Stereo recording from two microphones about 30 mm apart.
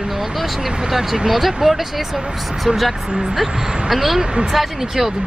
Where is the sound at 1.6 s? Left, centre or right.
Centre.